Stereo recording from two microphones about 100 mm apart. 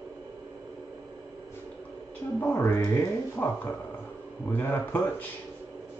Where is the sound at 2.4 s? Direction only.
20° left (ahead or behind).